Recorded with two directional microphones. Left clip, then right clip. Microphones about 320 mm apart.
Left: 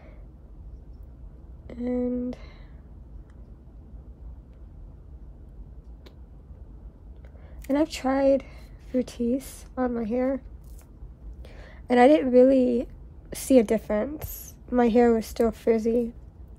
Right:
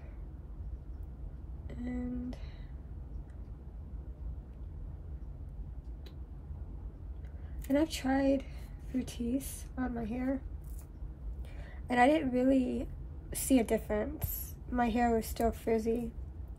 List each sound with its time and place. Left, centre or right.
1.7 s speech: left
7.7 s speech: left
11.4 s a woman's voice: left